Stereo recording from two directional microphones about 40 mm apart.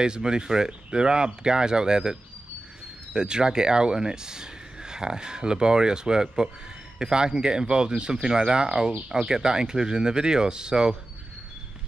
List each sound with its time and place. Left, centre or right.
0.0 s speech: right